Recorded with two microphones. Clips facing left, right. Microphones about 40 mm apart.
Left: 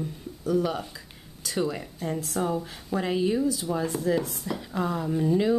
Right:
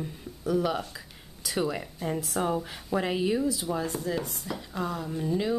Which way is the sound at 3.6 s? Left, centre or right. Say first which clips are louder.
Left 3 dB; centre.